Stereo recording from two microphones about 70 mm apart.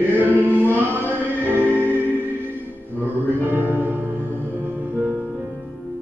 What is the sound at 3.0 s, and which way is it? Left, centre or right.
Music, right.